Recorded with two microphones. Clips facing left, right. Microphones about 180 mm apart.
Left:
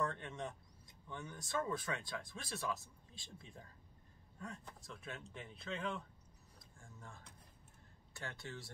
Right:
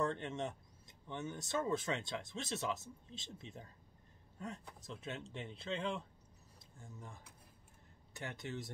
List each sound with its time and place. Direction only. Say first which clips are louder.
0.0 s speech: right 4 dB; 25° right (ahead or behind)
6.8 s speech: right 3 dB; 15° right (ahead or behind)